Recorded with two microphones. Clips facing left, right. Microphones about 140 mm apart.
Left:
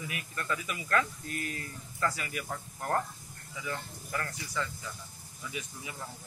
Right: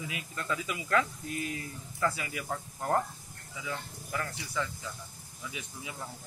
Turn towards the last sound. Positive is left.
turn(degrees=-15)  # may be behind; listen again after turning